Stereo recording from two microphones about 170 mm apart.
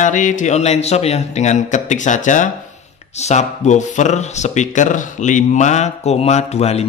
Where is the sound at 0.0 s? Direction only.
50° left (ahead or behind).